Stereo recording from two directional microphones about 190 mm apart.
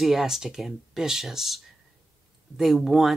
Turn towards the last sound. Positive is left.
turn(degrees=0)  # may be behind; listen again after turning